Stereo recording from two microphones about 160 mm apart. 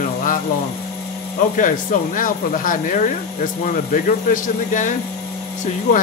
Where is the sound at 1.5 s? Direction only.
55° left (ahead or behind).